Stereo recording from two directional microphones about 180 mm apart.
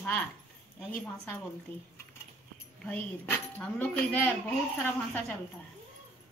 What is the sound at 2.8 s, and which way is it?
Speech, 10° left (ahead or behind).